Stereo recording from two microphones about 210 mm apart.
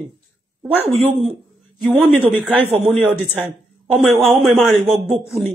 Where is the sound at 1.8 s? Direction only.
5° right (ahead or behind).